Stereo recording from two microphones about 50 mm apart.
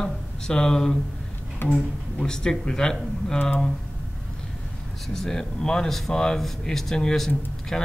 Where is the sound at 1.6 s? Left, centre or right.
Left.